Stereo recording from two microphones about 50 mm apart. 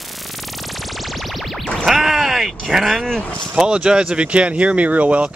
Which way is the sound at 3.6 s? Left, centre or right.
Centre.